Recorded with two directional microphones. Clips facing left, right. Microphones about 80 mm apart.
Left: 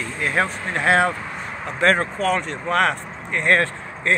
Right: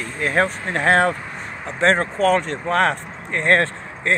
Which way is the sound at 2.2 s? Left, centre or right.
Right.